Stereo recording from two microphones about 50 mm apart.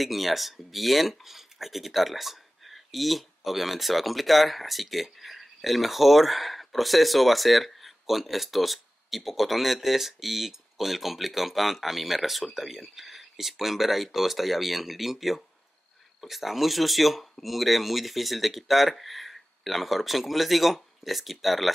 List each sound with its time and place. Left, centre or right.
0.0 s speech: centre